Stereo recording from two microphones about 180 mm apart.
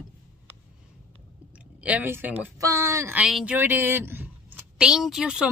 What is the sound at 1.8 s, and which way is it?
Speech, 10° right (ahead or behind).